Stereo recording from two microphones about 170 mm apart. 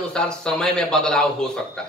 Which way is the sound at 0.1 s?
5° left (ahead or behind).